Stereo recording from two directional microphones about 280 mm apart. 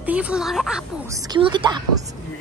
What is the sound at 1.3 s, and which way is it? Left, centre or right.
Speech, centre.